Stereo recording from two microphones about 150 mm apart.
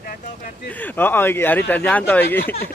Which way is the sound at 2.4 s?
90° left.